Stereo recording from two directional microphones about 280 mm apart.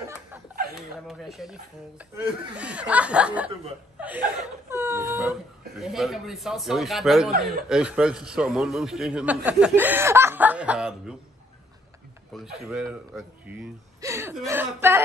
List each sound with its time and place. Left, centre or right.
0.0 s speech: centre
4.6 s a man's voice: centre
12.5 s a man's voice: centre